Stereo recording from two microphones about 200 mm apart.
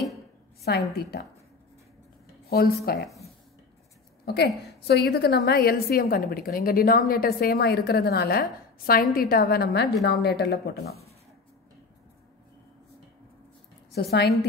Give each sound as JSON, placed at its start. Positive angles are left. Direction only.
{"t": 0.7, "sound": "a woman's voice", "side_deg": 50}
{"t": 2.5, "sound": "a woman's voice", "side_deg": 50}
{"t": 4.3, "sound": "a woman's voice", "side_deg": 55}
{"t": 13.9, "sound": "a woman's voice", "side_deg": 55}